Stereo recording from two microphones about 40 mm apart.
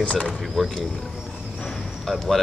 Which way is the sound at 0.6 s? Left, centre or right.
Centre.